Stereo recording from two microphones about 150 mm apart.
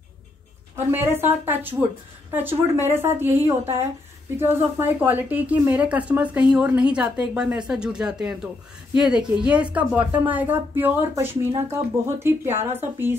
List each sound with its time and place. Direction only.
0.9 s speech: 15° right (ahead or behind)